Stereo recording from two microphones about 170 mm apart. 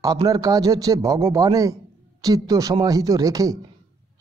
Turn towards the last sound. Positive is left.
turn(degrees=-20)  # may be behind; listen again after turning